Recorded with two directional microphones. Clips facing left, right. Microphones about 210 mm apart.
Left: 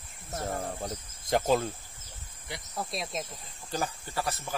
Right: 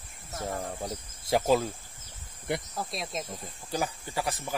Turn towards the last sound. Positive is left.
turn(degrees=-15)  # may be behind; listen again after turning